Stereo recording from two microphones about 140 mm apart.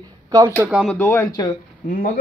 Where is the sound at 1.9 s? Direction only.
75° left (ahead or behind).